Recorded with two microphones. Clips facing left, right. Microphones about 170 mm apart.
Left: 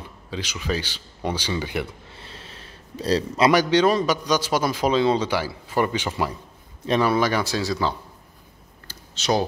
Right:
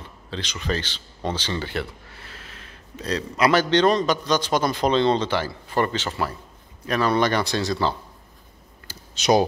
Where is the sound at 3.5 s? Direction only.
10° left (ahead or behind).